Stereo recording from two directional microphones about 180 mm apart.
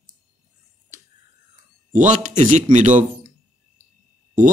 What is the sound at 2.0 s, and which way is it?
Speech, 45° right (ahead or behind).